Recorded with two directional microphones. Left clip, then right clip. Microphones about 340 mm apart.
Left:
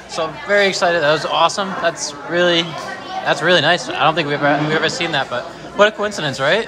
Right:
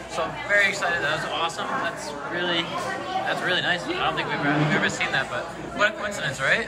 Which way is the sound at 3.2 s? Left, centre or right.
Centre.